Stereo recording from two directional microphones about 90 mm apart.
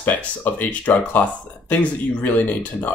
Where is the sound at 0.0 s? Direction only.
20° left (ahead or behind).